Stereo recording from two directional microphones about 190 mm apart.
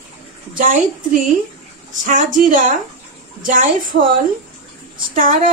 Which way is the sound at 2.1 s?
45° right (ahead or behind).